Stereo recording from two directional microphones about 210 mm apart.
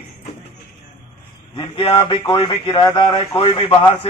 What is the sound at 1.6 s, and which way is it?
A man's voice, 25° left (ahead or behind).